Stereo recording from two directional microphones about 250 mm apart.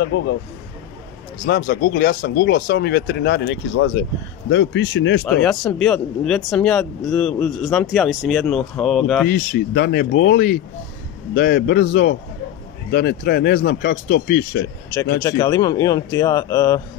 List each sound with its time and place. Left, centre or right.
0.0 s speech: left
1.4 s speech: left
5.2 s speech: centre
9.3 s speech: left
15.2 s a man's voice: centre